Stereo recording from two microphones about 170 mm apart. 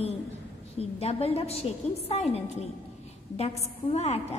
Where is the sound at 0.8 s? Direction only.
35° left (ahead or behind).